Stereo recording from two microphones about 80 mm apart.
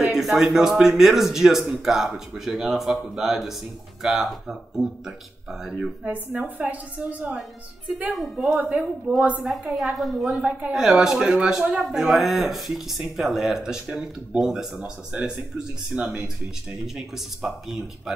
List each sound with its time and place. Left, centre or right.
0.0 s speech: centre
6.3 s speech: centre
8.1 s speech: centre
8.5 s a woman's voice: centre
9.4 s speech: centre